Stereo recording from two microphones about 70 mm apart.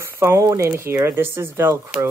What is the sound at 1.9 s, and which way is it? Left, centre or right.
Speech, centre.